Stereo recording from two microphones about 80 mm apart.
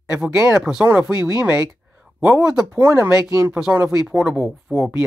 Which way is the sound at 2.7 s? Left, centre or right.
Right.